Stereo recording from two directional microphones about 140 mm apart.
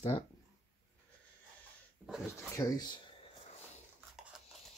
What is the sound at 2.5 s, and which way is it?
Speech, 30° left (ahead or behind).